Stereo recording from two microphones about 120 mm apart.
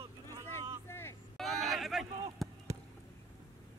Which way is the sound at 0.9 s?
20° left (ahead or behind).